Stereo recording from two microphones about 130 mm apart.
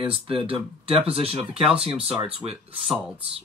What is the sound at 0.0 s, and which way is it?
Speech, 45° right (ahead or behind).